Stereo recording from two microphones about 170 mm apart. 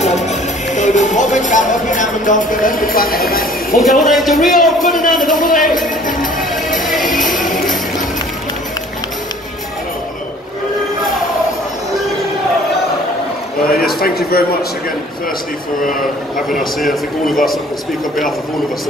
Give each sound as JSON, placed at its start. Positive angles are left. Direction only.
{"t": 0.0, "sound": "speech", "side_deg": 40}
{"t": 3.7, "sound": "a man's voice", "side_deg": 0}
{"t": 5.2, "sound": "speech", "side_deg": 50}
{"t": 6.9, "sound": "music", "side_deg": 0}
{"t": 7.2, "sound": "music", "side_deg": 50}
{"t": 13.7, "sound": "a sound", "side_deg": 60}
{"t": 16.3, "sound": "a man's voice", "side_deg": 0}